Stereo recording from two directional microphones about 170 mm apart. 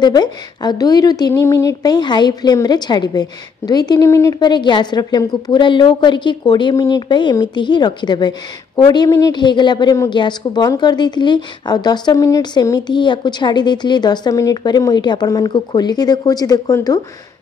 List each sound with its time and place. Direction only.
0.0 s a woman's voice: 25° left (ahead or behind)